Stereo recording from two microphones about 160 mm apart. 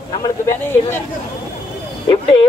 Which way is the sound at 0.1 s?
25° left (ahead or behind).